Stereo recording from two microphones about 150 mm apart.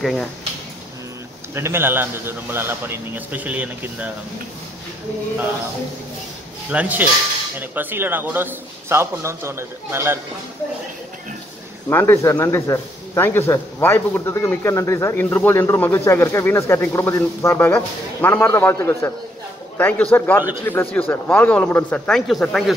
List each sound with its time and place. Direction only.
0.0 s speech: centre (ahead or behind)
1.5 s a man's voice: 15° right (ahead or behind)
6.7 s a man's voice: 10° right (ahead or behind)
11.9 s a man's voice: 15° left (ahead or behind); by 22.8 s centre (ahead or behind)